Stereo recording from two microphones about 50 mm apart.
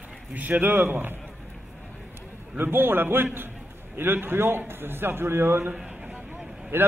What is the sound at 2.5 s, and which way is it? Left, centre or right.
A man's voice, right.